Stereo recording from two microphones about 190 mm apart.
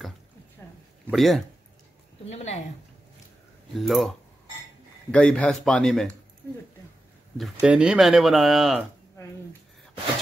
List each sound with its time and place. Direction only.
0.6 s a sound: 10° left (ahead or behind)
1.0 s speech: centre (ahead or behind)
2.2 s a woman's voice: 35° left (ahead or behind)
3.7 s speech: centre (ahead or behind)
5.1 s speech: 5° left (ahead or behind)
7.3 s speech: 5° right (ahead or behind)